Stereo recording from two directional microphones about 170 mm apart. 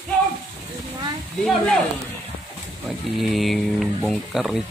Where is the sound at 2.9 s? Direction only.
Centre (ahead or behind).